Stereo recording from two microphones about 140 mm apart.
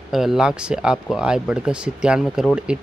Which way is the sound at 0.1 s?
Centre (ahead or behind).